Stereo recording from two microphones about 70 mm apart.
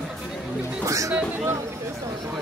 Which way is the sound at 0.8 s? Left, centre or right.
Right.